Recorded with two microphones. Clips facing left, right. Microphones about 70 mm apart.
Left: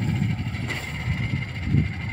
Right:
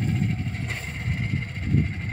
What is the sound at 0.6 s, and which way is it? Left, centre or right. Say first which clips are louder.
Vehicle: left 2 dB; left.